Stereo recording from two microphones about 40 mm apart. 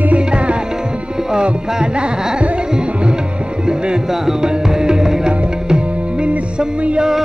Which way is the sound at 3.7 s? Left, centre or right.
Right.